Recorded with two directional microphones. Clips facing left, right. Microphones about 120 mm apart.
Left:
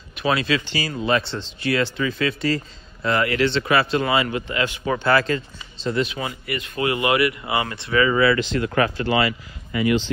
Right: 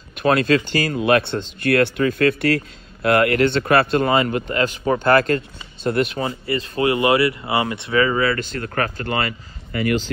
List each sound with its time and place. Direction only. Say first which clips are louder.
0.1 s speech: right 5 dB; 50° right (ahead or behind)
6.1 s speech: right 5 dB; 30° right (ahead or behind)
8.2 s speech: left 3 dB; 45° right (ahead or behind)